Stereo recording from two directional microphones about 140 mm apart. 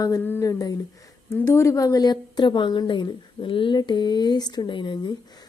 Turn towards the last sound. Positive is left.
turn(degrees=30)  # may be behind; listen again after turning